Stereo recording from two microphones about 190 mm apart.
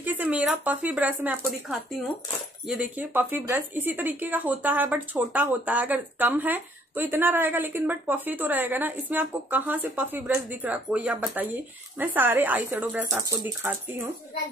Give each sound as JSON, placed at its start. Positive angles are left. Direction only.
{"t": 0.0, "sound": "speech", "side_deg": -10}